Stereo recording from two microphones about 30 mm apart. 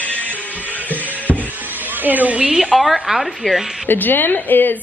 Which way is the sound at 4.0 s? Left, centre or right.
Left.